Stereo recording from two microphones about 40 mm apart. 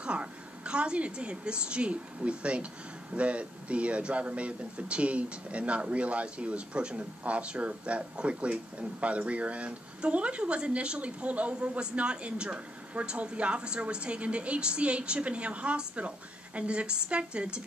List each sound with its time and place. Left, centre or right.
0.0 s a woman's voice: right